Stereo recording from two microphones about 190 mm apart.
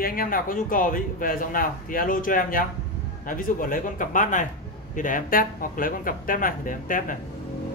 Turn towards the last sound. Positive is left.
turn(degrees=45)  # may be behind; listen again after turning